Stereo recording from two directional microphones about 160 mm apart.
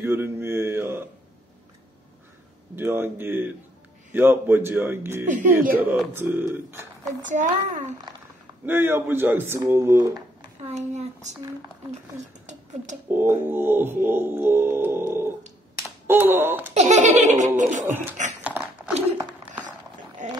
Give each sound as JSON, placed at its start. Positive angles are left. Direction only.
{"t": 0.0, "sound": "mantra", "side_deg": -15}
{"t": 2.7, "sound": "speech", "side_deg": -15}
{"t": 5.2, "sound": "speech", "side_deg": -50}
{"t": 5.9, "sound": "speech", "side_deg": -15}
{"t": 7.2, "sound": "speech", "side_deg": -50}
{"t": 8.6, "sound": "speech", "side_deg": -15}
{"t": 10.6, "sound": "speech", "side_deg": -45}
{"t": 13.1, "sound": "speech", "side_deg": -15}
{"t": 16.7, "sound": "speech", "side_deg": -50}
{"t": 18.4, "sound": "a sound", "side_deg": -10}